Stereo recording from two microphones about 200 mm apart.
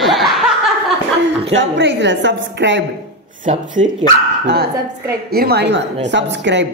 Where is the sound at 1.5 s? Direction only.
65° right (ahead or behind).